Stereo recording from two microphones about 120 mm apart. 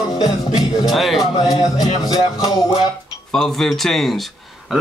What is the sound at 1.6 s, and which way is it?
Music, 35° left (ahead or behind).